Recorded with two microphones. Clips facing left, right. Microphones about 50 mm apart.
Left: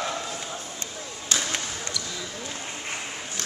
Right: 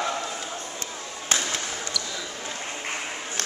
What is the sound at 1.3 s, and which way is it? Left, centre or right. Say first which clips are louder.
Basketball bounce: right 1 dB; right.